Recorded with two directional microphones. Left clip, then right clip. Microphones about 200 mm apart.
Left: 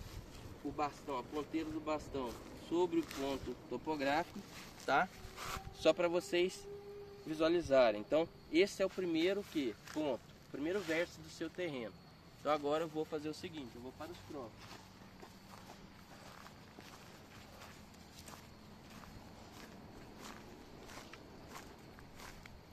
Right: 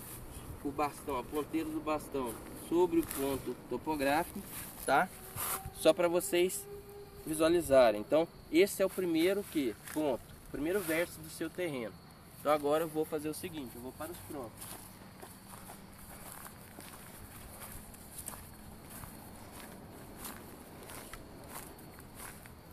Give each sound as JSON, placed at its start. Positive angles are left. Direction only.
{"t": 0.7, "sound": "speech", "side_deg": 0}